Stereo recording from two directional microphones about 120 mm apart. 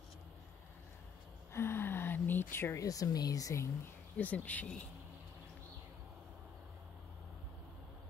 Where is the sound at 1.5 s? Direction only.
20° left (ahead or behind).